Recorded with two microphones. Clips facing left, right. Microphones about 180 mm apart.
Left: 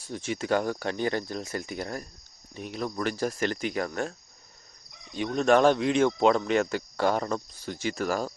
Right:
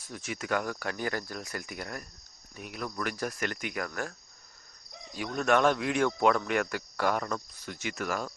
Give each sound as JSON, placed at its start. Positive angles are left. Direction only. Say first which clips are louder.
{"t": 0.0, "sound": "speech", "louder": "left 6 dB", "side_deg": 30}
{"t": 5.1, "sound": "speech", "louder": "left 5 dB", "side_deg": 25}